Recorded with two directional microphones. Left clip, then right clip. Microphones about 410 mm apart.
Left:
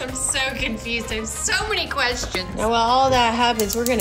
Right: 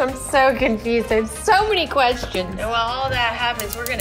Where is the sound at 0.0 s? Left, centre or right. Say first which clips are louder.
Right 8 dB; centre.